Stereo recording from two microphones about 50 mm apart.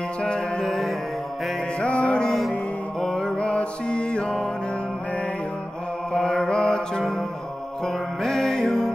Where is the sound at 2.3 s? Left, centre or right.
Centre.